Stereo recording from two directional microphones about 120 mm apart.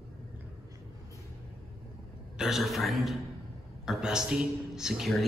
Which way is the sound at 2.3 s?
5° right (ahead or behind).